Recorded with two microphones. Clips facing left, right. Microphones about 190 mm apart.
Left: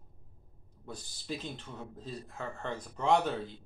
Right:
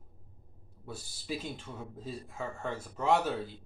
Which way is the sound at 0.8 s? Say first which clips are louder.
Right 1 dB; 5° right (ahead or behind).